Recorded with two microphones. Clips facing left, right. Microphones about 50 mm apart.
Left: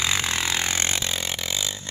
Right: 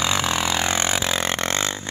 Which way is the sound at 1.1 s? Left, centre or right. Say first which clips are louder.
Right 6 dB; right.